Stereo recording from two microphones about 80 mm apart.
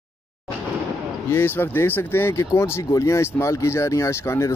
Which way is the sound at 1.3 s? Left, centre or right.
Left.